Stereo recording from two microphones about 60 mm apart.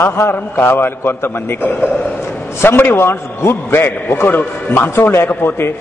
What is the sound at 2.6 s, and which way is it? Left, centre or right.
A man's voice, left.